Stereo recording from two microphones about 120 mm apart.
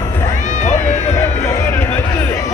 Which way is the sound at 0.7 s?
20° left (ahead or behind).